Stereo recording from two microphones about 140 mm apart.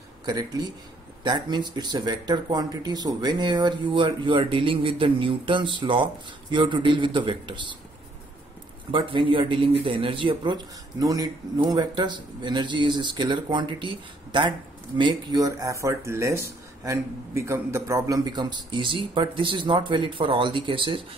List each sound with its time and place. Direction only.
0.2 s speech: 30° right (ahead or behind)
8.9 s speech: 35° right (ahead or behind)